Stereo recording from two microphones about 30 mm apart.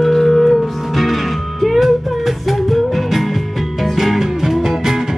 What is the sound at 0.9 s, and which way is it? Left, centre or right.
Music, centre.